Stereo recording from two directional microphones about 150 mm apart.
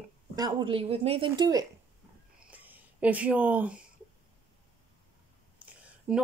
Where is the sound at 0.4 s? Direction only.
30° right (ahead or behind).